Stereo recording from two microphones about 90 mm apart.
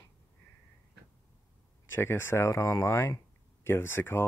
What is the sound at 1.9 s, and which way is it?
Speech, 30° left (ahead or behind).